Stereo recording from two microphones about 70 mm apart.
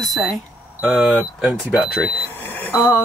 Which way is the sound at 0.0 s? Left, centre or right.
Centre.